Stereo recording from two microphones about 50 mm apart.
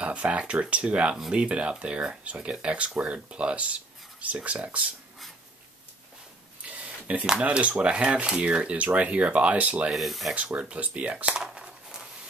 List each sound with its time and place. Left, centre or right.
0.0 s speech: right
6.7 s a sound: right
7.2 s speech: centre
9.8 s speech: centre
10.3 s speech: right
11.3 s a sound: centre